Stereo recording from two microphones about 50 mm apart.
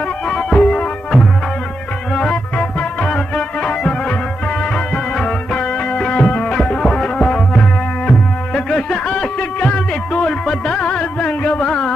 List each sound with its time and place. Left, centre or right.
0.3 s music: centre
2.5 s music: centre
5.2 s music: centre
10.2 s music: centre